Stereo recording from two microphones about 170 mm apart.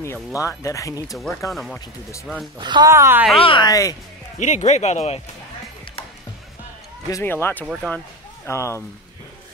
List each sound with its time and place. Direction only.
0.0 s speech: 15° left (ahead or behind)
1.5 s speech: centre (ahead or behind)
2.6 s speech: 25° right (ahead or behind)
3.3 s speech: 30° left (ahead or behind)
4.4 s speech: 45° left (ahead or behind)
7.1 s speech: 15° left (ahead or behind)
7.6 s speech: 5° right (ahead or behind)
8.5 s speech: 15° left (ahead or behind)